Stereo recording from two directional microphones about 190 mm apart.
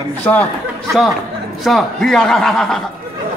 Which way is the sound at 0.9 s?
Centre (ahead or behind).